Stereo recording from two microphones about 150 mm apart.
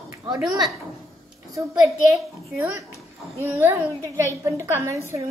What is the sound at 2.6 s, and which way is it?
A child's voice, 20° right (ahead or behind).